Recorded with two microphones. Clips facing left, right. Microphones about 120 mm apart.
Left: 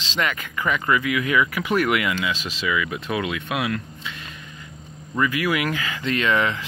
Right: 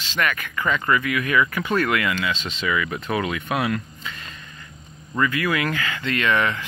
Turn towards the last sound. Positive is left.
turn(degrees=20)  # may be behind; listen again after turning